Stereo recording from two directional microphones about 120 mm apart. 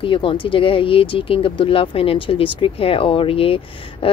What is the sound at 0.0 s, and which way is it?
Speech, 45° left (ahead or behind).